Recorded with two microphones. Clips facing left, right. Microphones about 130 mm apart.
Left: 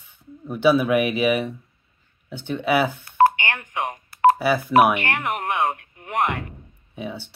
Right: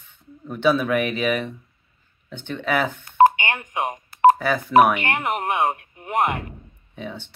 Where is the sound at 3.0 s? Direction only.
20° right (ahead or behind).